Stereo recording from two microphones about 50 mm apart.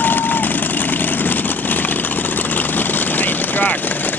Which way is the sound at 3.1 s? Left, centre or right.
Left.